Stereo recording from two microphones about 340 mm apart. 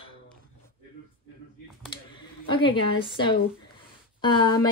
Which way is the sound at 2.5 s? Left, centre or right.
Centre.